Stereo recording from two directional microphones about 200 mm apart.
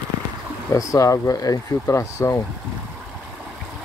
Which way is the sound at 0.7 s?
15° left (ahead or behind).